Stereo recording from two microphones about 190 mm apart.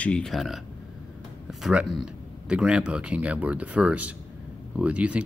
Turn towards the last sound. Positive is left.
turn(degrees=-5)  # may be behind; listen again after turning